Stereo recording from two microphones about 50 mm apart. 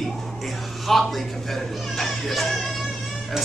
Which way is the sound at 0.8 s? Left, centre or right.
Centre.